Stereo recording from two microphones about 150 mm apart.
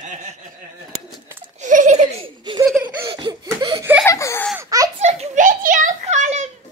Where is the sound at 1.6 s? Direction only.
55° right (ahead or behind).